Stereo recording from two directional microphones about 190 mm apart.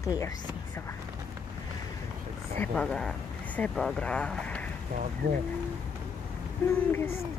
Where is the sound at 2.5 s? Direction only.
5° left (ahead or behind).